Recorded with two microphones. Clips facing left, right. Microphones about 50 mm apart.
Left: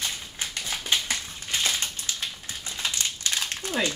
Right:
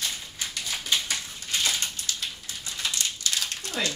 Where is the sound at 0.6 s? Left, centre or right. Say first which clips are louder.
Left 1 dB; left.